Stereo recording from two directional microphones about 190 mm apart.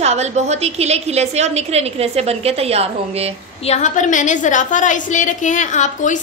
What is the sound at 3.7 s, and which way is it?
A woman's voice, 40° left (ahead or behind).